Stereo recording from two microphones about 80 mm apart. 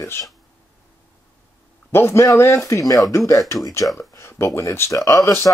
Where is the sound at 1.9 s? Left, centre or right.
Left.